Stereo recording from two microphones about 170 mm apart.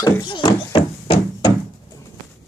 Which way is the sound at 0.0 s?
25° left (ahead or behind).